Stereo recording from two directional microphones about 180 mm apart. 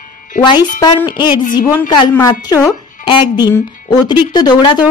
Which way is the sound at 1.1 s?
25° left (ahead or behind).